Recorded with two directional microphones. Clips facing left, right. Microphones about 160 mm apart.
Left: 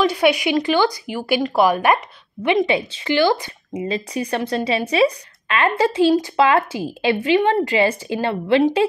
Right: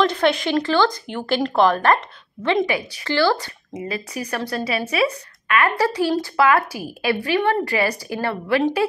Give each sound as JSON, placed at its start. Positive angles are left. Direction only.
{"t": 0.0, "sound": "speech", "side_deg": 10}
{"t": 3.8, "sound": "speech", "side_deg": 30}